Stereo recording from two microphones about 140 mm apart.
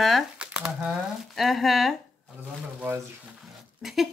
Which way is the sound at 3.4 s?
Centre (ahead or behind).